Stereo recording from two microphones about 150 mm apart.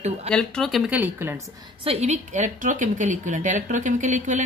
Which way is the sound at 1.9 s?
50° right (ahead or behind).